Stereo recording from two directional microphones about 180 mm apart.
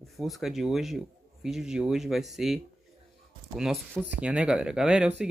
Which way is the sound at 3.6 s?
Centre (ahead or behind).